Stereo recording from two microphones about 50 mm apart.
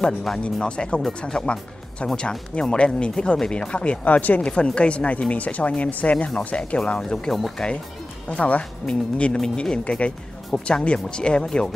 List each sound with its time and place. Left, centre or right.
0.0 s speech: centre
0.4 s speech: left
4.0 s speech: left
7.0 s speech: centre
7.3 s speech: centre
8.3 s speech: left